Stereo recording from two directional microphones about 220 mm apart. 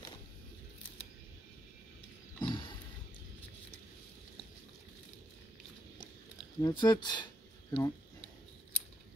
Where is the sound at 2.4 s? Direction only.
20° left (ahead or behind).